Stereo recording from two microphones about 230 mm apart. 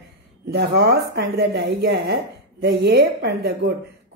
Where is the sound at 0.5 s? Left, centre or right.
Right.